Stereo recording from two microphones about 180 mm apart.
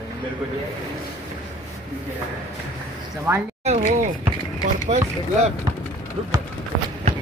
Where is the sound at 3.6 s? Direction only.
40° right (ahead or behind).